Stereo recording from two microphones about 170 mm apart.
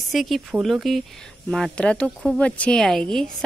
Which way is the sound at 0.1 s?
Centre (ahead or behind).